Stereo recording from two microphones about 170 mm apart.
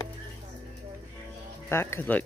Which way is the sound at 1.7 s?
15° left (ahead or behind).